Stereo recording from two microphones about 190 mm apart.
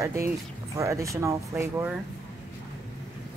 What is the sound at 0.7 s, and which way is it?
Speech, 15° right (ahead or behind).